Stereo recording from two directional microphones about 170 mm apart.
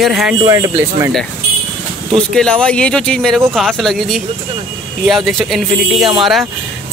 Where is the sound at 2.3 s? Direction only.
5° left (ahead or behind).